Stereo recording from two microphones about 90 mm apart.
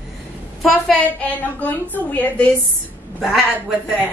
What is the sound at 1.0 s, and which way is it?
A woman's voice, 20° left (ahead or behind).